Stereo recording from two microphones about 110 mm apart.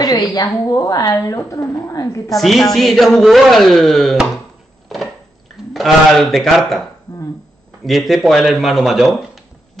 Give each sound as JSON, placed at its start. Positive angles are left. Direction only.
{"t": 0.0, "sound": "a woman's voice", "side_deg": 35}
{"t": 2.2, "sound": "speech", "side_deg": 0}
{"t": 5.7, "sound": "speech", "side_deg": 0}